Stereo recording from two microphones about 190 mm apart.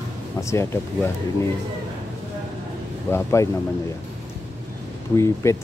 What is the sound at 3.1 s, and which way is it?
Speech, 15° left (ahead or behind).